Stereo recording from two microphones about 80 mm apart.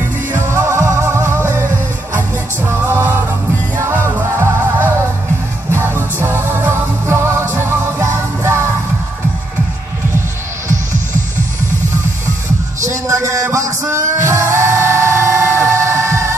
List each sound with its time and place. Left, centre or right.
0.3 s music: right
2.7 s music: right
12.8 s music: right